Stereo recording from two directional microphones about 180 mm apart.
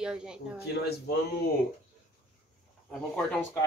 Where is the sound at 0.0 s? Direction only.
5° right (ahead or behind).